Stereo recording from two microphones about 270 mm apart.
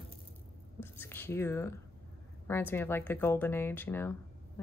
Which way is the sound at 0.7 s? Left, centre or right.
Centre.